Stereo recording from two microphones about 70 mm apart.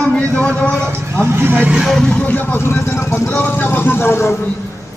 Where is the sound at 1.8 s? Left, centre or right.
Centre.